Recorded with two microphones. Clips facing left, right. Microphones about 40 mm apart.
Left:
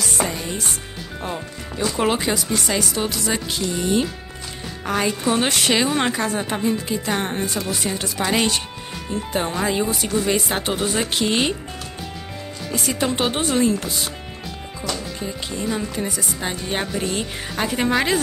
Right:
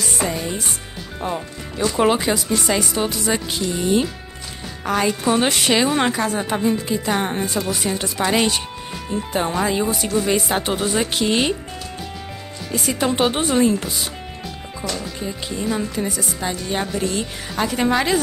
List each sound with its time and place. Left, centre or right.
1.2 s speech: centre
2.7 s a woman's voice: centre
12.7 s a woman's voice: centre
15.2 s a woman's voice: centre
16.4 s speech: left
16.8 s speech: centre